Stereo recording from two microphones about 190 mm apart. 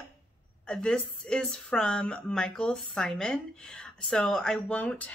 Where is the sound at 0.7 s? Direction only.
5° left (ahead or behind).